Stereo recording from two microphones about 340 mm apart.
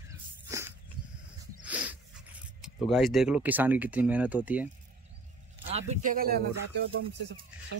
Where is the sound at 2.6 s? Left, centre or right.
Centre.